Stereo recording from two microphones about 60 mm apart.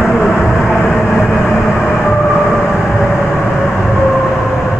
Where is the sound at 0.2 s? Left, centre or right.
Centre.